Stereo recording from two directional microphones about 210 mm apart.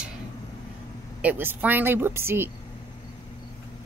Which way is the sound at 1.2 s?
10° right (ahead or behind).